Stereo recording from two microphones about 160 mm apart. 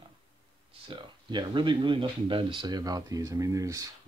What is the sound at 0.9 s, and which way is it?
Speech, 30° right (ahead or behind).